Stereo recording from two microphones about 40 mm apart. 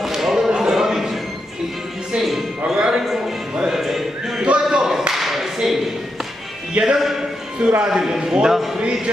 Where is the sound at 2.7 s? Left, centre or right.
Right.